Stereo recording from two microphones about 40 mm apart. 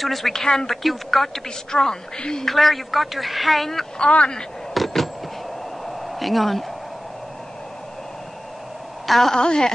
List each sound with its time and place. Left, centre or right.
0.0 s a woman's voice: centre
2.4 s a woman's voice: centre
4.7 s a sound: centre
9.0 s a woman's voice: centre
9.3 s a woman's voice: centre